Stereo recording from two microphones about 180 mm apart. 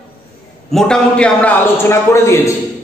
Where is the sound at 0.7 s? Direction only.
5° left (ahead or behind).